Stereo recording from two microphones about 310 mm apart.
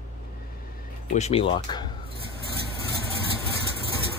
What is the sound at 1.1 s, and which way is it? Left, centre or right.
Speech, centre.